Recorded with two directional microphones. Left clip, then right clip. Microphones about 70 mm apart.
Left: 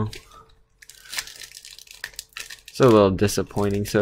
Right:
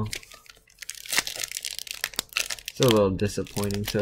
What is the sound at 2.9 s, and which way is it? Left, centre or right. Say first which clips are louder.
Speech: left 6 dB; centre.